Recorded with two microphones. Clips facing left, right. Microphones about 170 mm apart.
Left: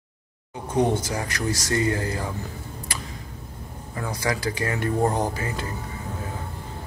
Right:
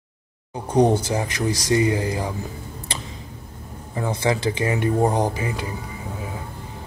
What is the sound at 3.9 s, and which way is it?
Speech, 25° right (ahead or behind).